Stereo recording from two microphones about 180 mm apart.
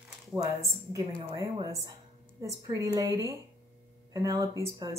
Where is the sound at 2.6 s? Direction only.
20° right (ahead or behind).